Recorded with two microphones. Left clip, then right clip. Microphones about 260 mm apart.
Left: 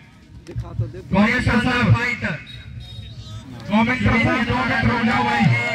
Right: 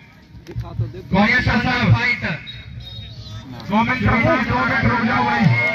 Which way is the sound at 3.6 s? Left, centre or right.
Left.